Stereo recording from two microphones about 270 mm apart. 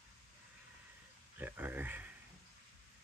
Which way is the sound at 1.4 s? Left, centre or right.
Centre.